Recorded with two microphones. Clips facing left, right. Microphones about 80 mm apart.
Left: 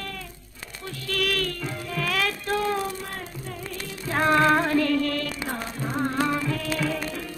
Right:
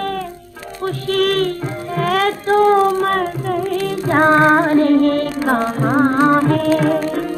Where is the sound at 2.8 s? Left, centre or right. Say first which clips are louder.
Right 17 dB; right.